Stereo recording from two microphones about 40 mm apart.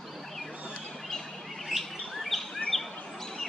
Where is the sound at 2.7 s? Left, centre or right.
Centre.